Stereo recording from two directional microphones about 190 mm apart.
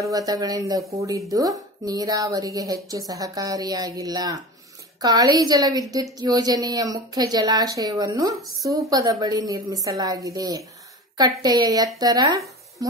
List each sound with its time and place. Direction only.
0.0 s speech: 20° right (ahead or behind)